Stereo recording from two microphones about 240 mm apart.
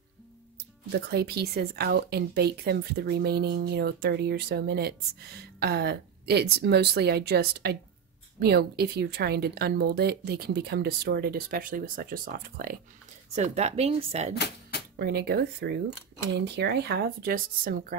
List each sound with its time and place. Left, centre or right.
0.8 s speech: right
15.0 s speech: right